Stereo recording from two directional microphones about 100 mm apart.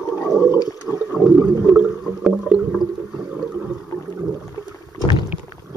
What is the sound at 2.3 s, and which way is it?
Rowboat, centre (ahead or behind).